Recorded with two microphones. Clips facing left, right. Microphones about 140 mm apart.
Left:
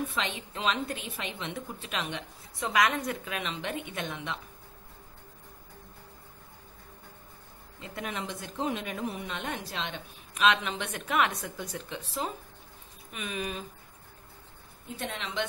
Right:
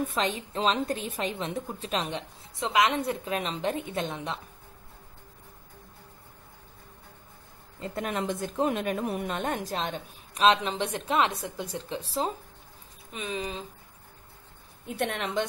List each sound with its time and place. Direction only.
0.0 s a woman's voice: 40° right (ahead or behind)
2.6 s a woman's voice: 25° right (ahead or behind)
7.8 s a woman's voice: 45° right (ahead or behind); by 13.7 s 25° right (ahead or behind)
15.0 s a woman's voice: 60° right (ahead or behind)